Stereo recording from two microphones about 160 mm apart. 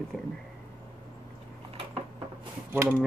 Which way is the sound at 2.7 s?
15° right (ahead or behind).